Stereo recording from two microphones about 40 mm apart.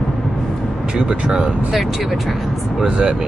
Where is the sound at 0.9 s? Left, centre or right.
Right.